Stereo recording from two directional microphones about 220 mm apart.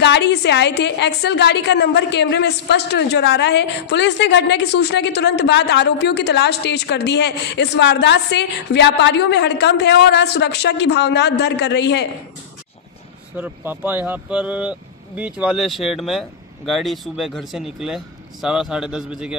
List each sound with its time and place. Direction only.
0.0 s a woman's voice: 50° left (ahead or behind)
13.4 s speech: 10° right (ahead or behind)